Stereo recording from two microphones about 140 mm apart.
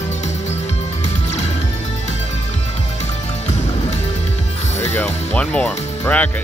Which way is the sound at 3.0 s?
55° left (ahead or behind).